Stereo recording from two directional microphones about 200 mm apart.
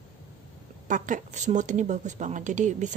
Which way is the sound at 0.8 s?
40° right (ahead or behind).